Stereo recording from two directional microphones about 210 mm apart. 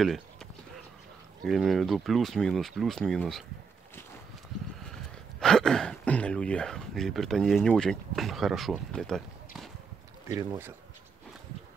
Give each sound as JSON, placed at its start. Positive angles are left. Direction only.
{"t": 0.0, "sound": "clip-clop", "side_deg": 0}
{"t": 1.4, "sound": "speech", "side_deg": 0}
{"t": 4.9, "sound": "speech", "side_deg": 5}
{"t": 10.2, "sound": "speech", "side_deg": -15}